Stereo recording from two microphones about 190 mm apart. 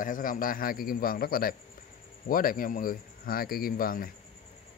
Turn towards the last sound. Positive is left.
turn(degrees=50)  # may be behind; listen again after turning